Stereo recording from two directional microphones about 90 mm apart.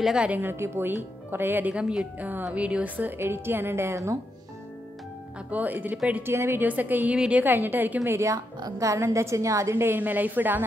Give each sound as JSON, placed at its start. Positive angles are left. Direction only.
{"t": 0.0, "sound": "speech", "side_deg": -10}
{"t": 5.5, "sound": "a woman's voice", "side_deg": -20}
{"t": 6.3, "sound": "speech", "side_deg": -25}
{"t": 8.0, "sound": "a woman's voice", "side_deg": -35}